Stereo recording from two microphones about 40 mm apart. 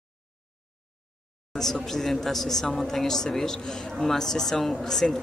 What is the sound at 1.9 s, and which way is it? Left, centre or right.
Speech, centre.